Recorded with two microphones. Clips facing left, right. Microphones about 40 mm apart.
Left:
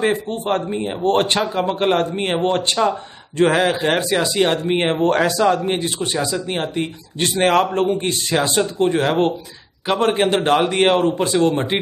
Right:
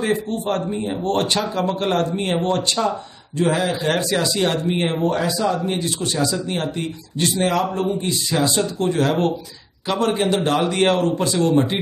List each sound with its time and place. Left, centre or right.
0.0 s a man's voice: left
3.3 s speech: left
3.8 s speech: left
5.0 s speech: left
5.7 s speech: left
7.2 s a man's voice: left